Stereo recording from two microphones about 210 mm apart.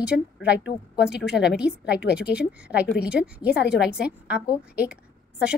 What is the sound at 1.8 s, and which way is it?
Speech, 55° left (ahead or behind).